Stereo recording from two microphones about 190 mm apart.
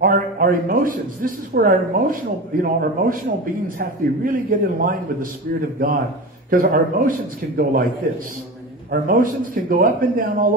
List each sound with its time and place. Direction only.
0.0 s speech: 45° right (ahead or behind)
6.5 s speech: 50° right (ahead or behind)
8.9 s speech: 50° right (ahead or behind)